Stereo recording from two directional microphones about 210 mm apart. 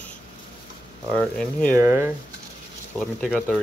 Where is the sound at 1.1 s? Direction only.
5° left (ahead or behind).